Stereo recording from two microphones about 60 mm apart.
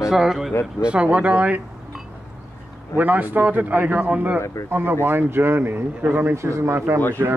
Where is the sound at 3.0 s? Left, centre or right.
Right.